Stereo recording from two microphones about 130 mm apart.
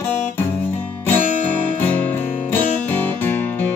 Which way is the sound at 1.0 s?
15° left (ahead or behind).